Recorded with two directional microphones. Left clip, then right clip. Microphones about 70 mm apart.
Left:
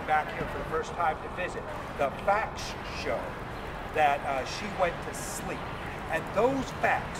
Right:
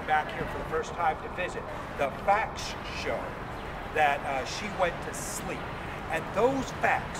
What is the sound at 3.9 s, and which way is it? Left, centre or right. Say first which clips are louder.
Speech: even; centre.